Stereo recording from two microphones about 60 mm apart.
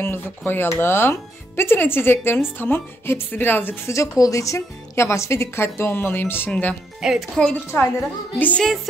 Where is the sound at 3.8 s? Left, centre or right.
Left.